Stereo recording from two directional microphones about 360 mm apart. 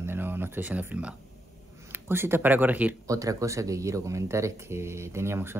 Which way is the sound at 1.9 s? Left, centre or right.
Centre.